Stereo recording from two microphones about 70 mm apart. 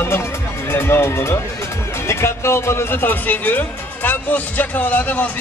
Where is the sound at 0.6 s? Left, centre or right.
Left.